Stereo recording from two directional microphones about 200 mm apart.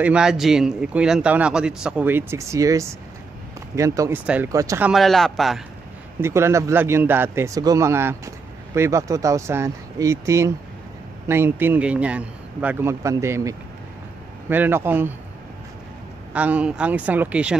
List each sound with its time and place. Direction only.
0.0 s a man's voice: 5° right (ahead or behind)
6.2 s speech: 15° right (ahead or behind)
16.3 s speech: 5° right (ahead or behind)